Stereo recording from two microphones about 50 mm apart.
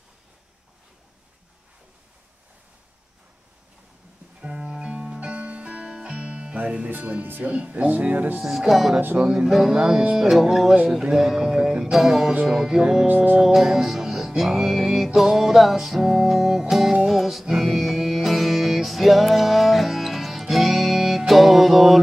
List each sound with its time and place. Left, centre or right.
4.4 s music: centre
6.9 s speech: right
8.5 s music: centre
9.2 s speech: right
9.5 s speech: centre
10.3 s music: centre
10.9 s speech: centre
11.8 s music: centre
12.4 s speech: centre
13.0 s speech: right
13.4 s music: centre